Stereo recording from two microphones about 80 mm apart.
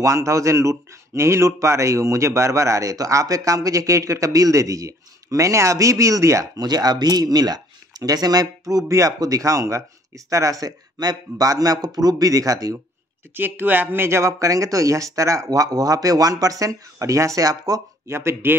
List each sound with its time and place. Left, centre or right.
0.0 s speech: right
13.3 s speech: right
18.0 s speech: right